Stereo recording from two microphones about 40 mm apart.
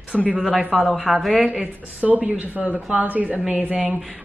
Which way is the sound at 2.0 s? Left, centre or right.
Right.